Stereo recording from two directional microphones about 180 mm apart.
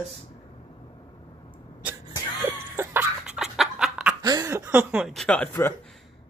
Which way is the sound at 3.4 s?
Centre (ahead or behind).